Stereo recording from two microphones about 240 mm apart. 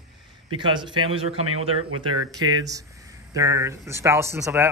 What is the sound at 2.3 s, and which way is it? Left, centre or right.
Speech, centre.